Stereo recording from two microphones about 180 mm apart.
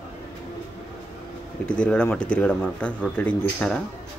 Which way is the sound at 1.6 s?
5° left (ahead or behind).